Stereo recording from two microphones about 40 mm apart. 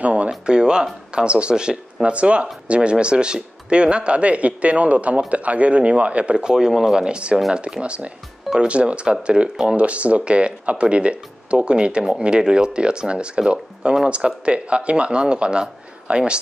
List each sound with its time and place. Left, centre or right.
0.0 s a sound: right
0.5 s speech: right
6.3 s speech: centre
7.1 s speech: right